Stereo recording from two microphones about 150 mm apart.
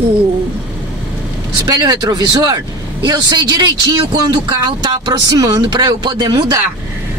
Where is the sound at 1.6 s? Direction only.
25° right (ahead or behind).